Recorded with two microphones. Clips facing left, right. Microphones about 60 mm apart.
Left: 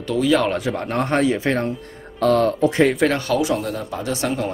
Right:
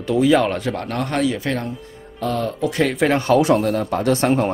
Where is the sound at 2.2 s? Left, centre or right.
Left.